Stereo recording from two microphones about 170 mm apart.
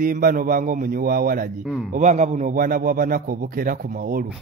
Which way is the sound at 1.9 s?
40° right (ahead or behind).